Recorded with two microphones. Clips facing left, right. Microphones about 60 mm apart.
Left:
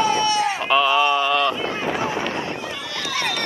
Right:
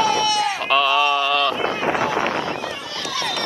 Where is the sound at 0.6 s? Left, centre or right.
Centre.